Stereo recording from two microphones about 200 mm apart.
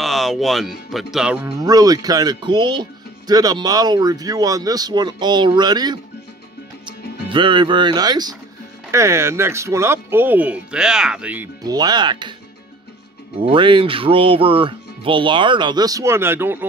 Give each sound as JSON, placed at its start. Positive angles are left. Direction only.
{"t": 0.0, "sound": "speech", "side_deg": 0}
{"t": 1.6, "sound": "speech", "side_deg": -20}
{"t": 7.2, "sound": "speech", "side_deg": -25}
{"t": 11.6, "sound": "speech", "side_deg": -20}
{"t": 13.4, "sound": "speech", "side_deg": -25}